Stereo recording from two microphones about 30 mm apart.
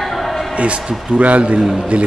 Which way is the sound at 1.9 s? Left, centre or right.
Right.